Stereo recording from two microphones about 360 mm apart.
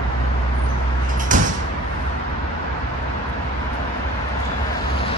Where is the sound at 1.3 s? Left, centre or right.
Right.